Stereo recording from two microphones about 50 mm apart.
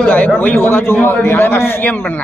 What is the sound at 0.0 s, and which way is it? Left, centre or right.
Speech, left.